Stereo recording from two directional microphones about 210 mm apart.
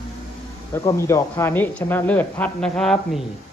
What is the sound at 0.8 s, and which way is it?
Speech, 15° left (ahead or behind).